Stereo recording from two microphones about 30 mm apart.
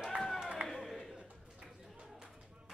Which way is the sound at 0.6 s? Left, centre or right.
Right.